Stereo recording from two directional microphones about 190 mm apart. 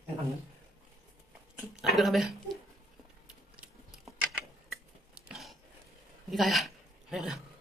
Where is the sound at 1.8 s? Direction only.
Centre (ahead or behind).